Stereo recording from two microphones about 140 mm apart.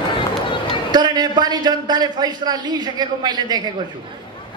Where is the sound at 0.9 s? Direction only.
30° right (ahead or behind).